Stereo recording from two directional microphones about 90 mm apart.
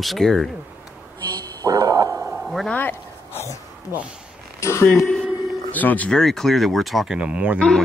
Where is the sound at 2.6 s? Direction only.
20° left (ahead or behind).